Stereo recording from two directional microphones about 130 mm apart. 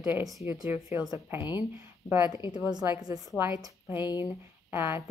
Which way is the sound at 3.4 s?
25° right (ahead or behind).